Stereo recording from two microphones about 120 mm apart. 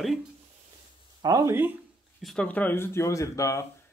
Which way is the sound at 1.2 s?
25° right (ahead or behind).